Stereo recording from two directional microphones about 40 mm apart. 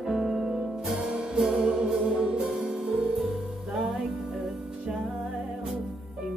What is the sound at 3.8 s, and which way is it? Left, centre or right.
Music, centre.